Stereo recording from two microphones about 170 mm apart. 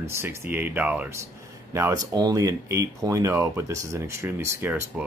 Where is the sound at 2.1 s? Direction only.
20° right (ahead or behind).